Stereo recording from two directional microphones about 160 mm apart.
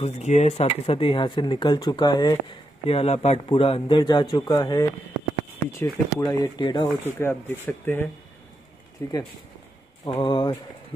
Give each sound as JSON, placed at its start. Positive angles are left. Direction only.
{"t": 0.0, "sound": "speech", "side_deg": 45}
{"t": 2.9, "sound": "speech", "side_deg": 40}
{"t": 7.1, "sound": "speech", "side_deg": 15}